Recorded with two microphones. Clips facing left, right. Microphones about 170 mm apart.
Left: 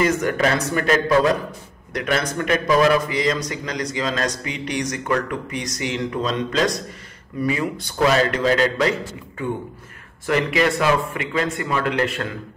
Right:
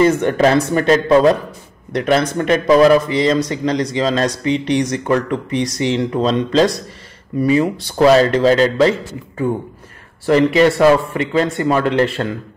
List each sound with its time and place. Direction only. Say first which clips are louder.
0.0 s a man's voice: right 6 dB; 30° right (ahead or behind)
10.2 s speech: right 8 dB; 30° right (ahead or behind)